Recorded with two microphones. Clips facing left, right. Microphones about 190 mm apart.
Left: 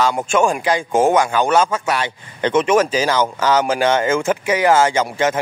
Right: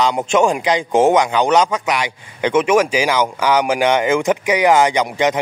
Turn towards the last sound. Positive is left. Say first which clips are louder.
# right 1 dB
turn(degrees=-15)  # may be behind; listen again after turning